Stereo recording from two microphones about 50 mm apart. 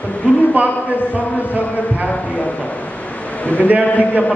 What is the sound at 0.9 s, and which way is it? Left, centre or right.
A man's voice, left.